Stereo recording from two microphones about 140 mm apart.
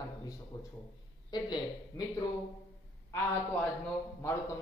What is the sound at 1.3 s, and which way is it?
Speech, 30° left (ahead or behind).